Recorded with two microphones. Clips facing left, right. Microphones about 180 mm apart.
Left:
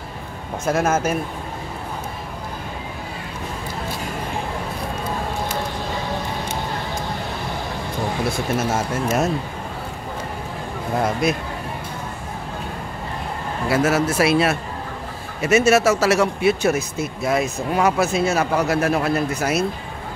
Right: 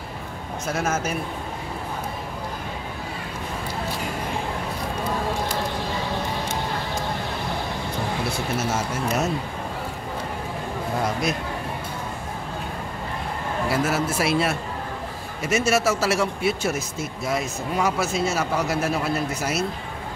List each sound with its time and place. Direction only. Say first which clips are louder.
0.7 s speech: left 6 dB; 55° left (ahead or behind)
8.5 s speech: left 3 dB; 55° left (ahead or behind)
13.7 s speech: left 6 dB; 75° left (ahead or behind)